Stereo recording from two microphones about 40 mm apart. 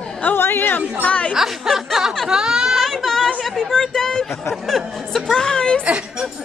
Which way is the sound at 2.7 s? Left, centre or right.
Centre.